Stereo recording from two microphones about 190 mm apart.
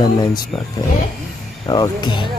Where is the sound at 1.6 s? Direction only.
20° left (ahead or behind).